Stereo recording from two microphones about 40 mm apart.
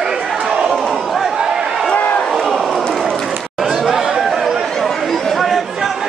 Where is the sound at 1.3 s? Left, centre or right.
Centre.